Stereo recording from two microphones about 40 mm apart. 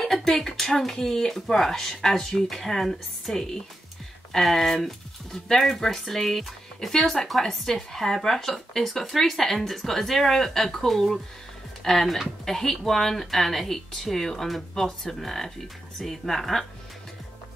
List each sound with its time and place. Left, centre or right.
0.0 s speech: centre
2.1 s speech: centre
2.4 s speech: centre